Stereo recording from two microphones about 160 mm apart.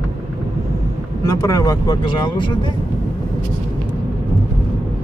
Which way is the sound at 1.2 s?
20° left (ahead or behind).